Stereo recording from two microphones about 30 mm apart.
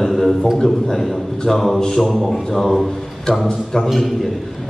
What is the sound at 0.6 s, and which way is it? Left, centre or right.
A man's voice, centre.